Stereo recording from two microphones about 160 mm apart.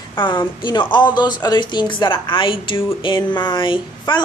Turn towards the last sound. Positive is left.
turn(degrees=30)  # may be behind; listen again after turning